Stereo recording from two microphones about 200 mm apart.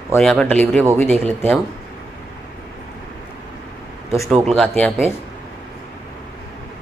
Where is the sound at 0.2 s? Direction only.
Centre (ahead or behind).